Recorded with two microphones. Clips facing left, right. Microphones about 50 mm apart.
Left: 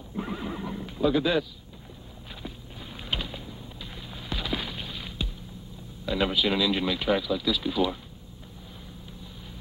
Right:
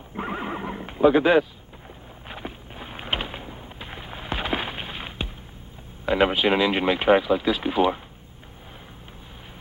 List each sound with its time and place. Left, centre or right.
0.1 s horse: right
2.2 s a sound: right
6.0 s speech: right